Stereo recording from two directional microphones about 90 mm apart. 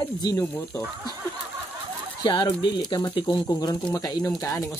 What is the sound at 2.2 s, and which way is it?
Speech, 60° left (ahead or behind).